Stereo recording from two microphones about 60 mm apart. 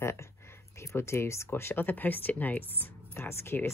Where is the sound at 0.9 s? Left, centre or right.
Left.